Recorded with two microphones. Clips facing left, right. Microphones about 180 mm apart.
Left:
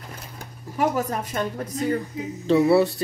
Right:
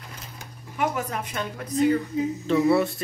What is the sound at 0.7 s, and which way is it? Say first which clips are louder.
Speech: left 4 dB; 40° left (ahead or behind).